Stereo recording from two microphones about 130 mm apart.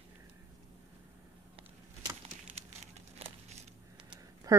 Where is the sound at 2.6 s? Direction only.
55° right (ahead or behind).